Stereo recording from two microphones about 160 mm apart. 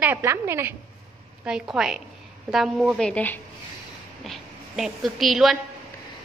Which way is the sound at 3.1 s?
10° left (ahead or behind).